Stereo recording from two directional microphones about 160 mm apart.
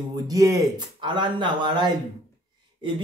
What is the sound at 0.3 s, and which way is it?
Speech, 20° right (ahead or behind).